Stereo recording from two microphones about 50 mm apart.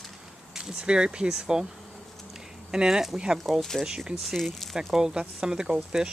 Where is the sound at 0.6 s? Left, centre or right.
Centre.